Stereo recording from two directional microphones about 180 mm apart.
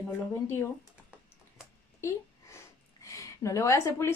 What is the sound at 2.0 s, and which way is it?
A woman's voice, 15° left (ahead or behind).